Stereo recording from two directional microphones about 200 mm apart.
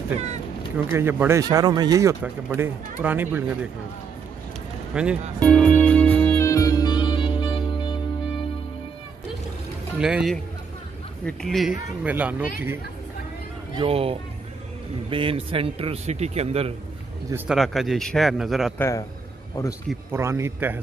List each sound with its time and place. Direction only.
0.8 s speech: 10° right (ahead or behind)
4.9 s speech: 5° right (ahead or behind)
5.4 s music: 5° left (ahead or behind); by 8.5 s 25° left (ahead or behind)
9.9 s speech: 5° right (ahead or behind)
13.7 s a man's voice: 30° right (ahead or behind)
17.5 s speech: centre (ahead or behind)
18.8 s a man's voice: 15° left (ahead or behind)
20.1 s speech: 15° right (ahead or behind)